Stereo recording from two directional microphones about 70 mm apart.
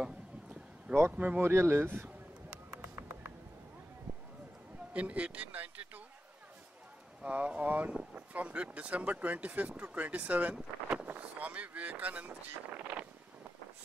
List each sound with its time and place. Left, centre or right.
1.1 s speech: right
1.4 s speech: right
2.8 s a sound: right
4.9 s speech: centre
7.2 s speech: centre